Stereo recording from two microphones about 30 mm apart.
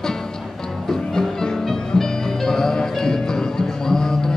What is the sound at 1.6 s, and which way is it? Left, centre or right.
Music, centre.